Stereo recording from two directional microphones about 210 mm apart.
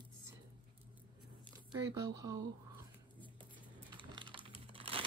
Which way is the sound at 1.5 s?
15° right (ahead or behind).